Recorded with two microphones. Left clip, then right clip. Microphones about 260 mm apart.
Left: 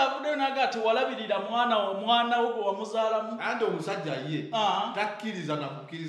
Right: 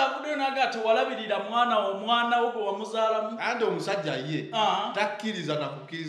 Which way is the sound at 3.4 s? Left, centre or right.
Right.